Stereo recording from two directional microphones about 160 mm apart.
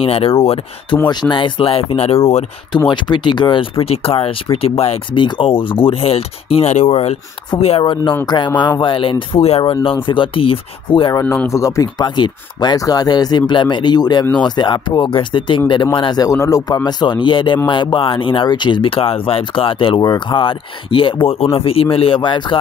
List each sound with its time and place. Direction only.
0.0 s speech: 35° left (ahead or behind)
2.9 s speech: 30° left (ahead or behind)
11.1 s speech: 15° left (ahead or behind)